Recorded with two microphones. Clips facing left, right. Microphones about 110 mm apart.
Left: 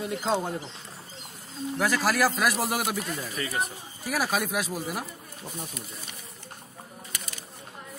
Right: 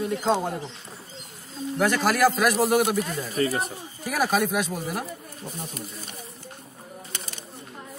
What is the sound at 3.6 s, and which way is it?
Speech, centre (ahead or behind).